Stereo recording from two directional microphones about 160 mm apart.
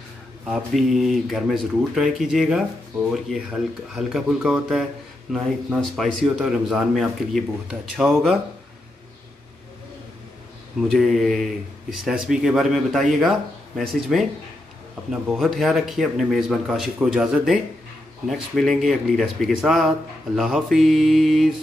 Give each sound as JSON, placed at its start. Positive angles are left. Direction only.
{"t": 0.5, "sound": "a man's voice", "side_deg": 0}
{"t": 10.9, "sound": "a man's voice", "side_deg": 0}